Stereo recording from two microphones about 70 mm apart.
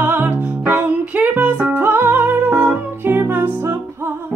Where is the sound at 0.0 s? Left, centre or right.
Right.